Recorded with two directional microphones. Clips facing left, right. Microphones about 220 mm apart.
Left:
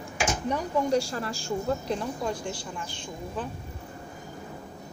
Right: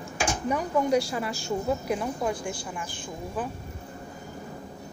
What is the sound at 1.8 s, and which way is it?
Speech, 10° right (ahead or behind).